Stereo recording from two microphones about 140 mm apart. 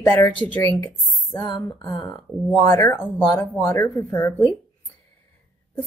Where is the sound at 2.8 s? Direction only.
10° left (ahead or behind).